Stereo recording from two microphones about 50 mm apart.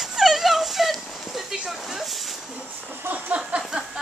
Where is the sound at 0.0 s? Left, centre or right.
Centre.